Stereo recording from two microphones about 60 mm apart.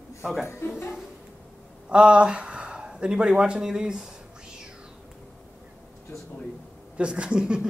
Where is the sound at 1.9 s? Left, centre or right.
Centre.